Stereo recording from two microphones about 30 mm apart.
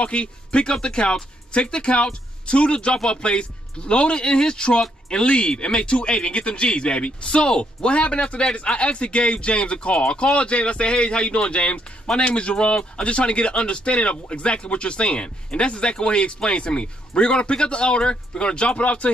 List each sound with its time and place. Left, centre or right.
0.0 s speech: left